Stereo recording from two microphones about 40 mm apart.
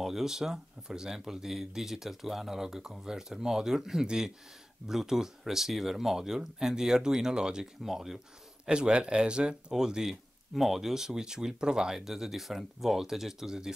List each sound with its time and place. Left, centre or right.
0.0 s speech: centre
7.8 s speech: centre
8.6 s speech: right
10.5 s speech: centre